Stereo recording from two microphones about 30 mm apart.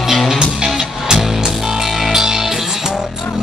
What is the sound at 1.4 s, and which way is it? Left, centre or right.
Music, centre.